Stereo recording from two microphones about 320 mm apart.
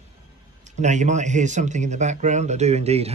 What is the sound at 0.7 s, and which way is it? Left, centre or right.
Speech, right.